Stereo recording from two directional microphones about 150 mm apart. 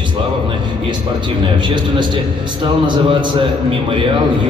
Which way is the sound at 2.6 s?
30° right (ahead or behind).